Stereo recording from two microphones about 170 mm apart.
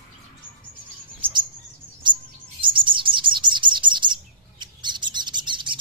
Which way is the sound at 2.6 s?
30° right (ahead or behind).